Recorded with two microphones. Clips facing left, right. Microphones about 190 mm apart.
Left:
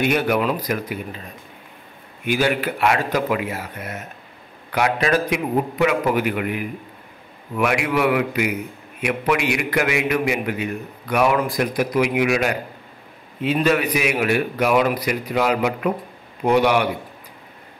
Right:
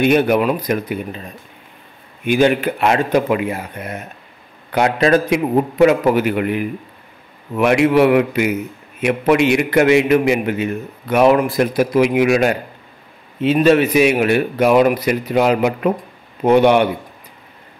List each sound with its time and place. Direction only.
0.0 s a man's voice: 25° right (ahead or behind)
2.2 s a man's voice: 20° right (ahead or behind)
4.7 s a man's voice: 30° right (ahead or behind)